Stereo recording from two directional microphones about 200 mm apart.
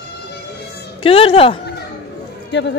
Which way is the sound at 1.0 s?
30° left (ahead or behind).